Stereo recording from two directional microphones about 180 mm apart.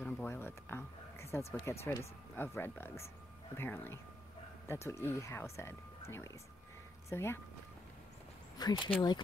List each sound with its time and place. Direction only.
0.0 s a sound: 10° left (ahead or behind)
1.5 s speech: 15° left (ahead or behind)
8.5 s speech: 25° left (ahead or behind)